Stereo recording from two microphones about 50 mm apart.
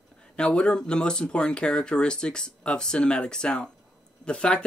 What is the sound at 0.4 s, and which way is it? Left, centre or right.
Speech, left.